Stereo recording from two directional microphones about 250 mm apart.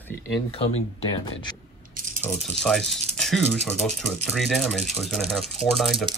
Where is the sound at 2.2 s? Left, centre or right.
Centre.